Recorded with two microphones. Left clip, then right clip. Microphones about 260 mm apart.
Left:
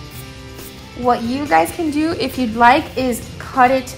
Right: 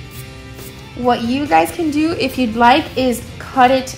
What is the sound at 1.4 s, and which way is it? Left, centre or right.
Speech, centre.